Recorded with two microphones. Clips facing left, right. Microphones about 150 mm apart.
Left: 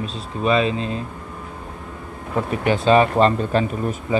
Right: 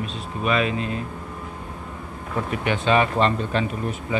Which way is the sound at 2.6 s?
35° left (ahead or behind).